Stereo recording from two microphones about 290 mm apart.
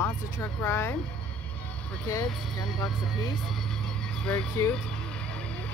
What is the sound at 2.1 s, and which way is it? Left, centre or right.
Speech, centre.